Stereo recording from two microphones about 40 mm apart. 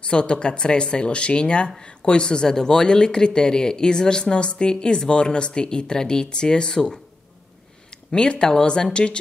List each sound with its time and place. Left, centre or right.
0.0 s speech: left
8.1 s speech: left